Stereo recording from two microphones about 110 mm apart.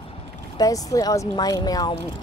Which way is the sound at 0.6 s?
30° left (ahead or behind).